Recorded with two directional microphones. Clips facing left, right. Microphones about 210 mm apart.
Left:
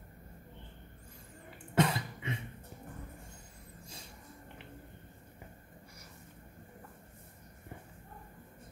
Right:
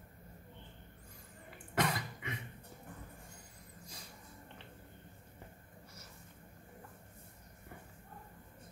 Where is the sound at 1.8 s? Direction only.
25° left (ahead or behind).